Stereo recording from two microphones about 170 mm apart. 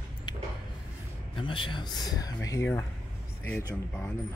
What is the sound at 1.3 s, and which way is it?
A man's voice, 30° left (ahead or behind).